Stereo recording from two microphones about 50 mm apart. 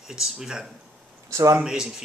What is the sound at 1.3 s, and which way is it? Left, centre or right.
Speech, right.